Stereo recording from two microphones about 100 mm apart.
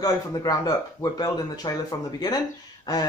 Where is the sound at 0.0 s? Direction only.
40° left (ahead or behind).